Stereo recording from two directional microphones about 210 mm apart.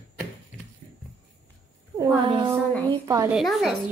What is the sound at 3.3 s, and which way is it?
Speech, centre (ahead or behind).